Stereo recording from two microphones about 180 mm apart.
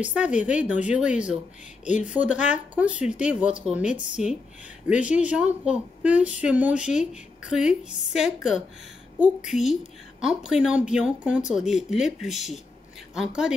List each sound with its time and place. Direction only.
0.0 s a woman's voice: 5° right (ahead or behind)
1.9 s speech: 40° left (ahead or behind)
2.1 s a woman's voice: 5° right (ahead or behind)
9.5 s speech: centre (ahead or behind)